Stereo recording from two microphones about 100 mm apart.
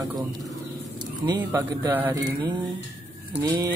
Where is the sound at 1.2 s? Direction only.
20° right (ahead or behind).